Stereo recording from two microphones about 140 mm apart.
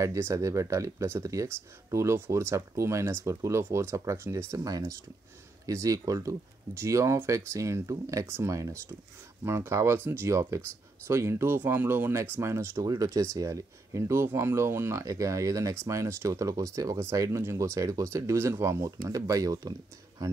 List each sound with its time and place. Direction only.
0.0 s speech: 20° right (ahead or behind)